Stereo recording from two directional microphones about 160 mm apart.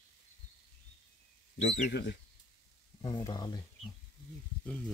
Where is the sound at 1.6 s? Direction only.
90° left.